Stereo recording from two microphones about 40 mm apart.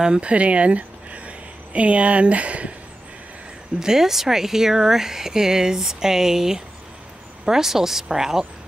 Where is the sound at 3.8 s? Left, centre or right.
Centre.